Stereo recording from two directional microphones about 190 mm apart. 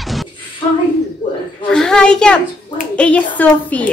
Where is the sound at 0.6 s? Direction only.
30° left (ahead or behind).